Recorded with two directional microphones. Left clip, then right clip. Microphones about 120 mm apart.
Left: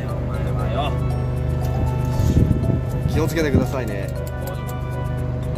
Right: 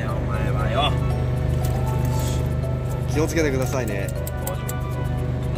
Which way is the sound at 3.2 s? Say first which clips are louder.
Left 1 dB; centre (ahead or behind).